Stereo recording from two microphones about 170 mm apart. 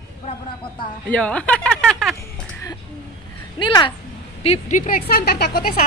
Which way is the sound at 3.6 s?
30° left (ahead or behind).